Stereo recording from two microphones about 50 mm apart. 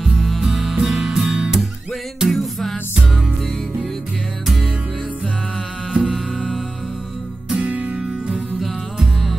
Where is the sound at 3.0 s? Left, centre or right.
Centre.